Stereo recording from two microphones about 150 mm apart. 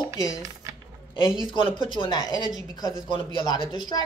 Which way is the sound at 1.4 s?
35° left (ahead or behind).